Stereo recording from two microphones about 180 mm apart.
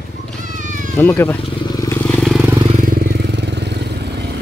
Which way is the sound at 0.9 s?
10° left (ahead or behind).